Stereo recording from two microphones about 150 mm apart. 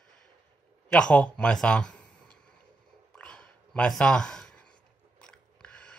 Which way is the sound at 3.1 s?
5° left (ahead or behind).